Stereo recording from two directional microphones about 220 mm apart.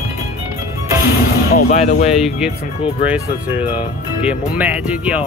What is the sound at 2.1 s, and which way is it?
Speech, centre (ahead or behind).